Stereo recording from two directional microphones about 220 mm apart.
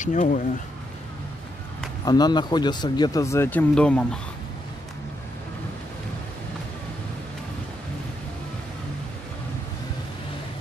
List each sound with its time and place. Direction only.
0.0 s speech: 35° left (ahead or behind)
2.0 s speech: 20° left (ahead or behind)